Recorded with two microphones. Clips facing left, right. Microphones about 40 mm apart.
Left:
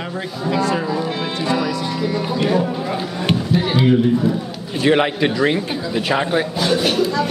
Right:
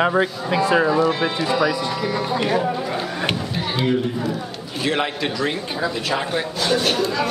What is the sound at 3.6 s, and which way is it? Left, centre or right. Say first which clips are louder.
A man's voice: left 4 dB; centre.